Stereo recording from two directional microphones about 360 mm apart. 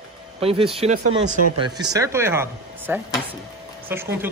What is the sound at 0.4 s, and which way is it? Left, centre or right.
Speech, centre.